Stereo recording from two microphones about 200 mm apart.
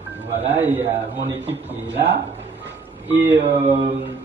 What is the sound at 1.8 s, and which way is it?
Music, 65° right (ahead or behind).